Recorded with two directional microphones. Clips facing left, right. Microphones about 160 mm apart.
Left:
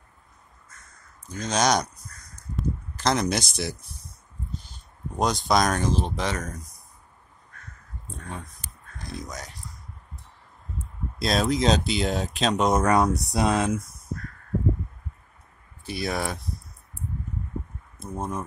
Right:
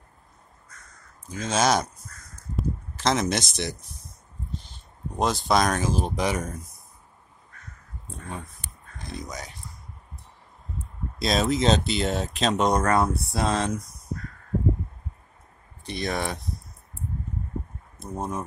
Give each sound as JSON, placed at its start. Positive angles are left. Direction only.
{"t": 1.2, "sound": "speech", "side_deg": -5}
{"t": 2.5, "sound": "a sound", "side_deg": 0}
{"t": 5.1, "sound": "speech", "side_deg": 0}
{"t": 8.1, "sound": "speech", "side_deg": -5}
{"t": 11.1, "sound": "speech", "side_deg": 0}
{"t": 12.8, "sound": "speech", "side_deg": 15}
{"t": 15.8, "sound": "speech", "side_deg": 5}
{"t": 17.9, "sound": "speech", "side_deg": 0}